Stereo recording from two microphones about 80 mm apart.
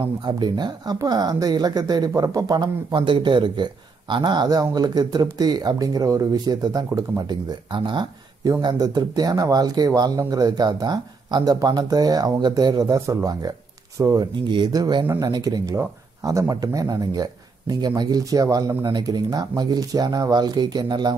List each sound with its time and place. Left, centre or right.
0.2 s a woman's voice: right
8.5 s speech: right
14.2 s a woman's voice: right
16.2 s speech: right
18.9 s a woman's voice: right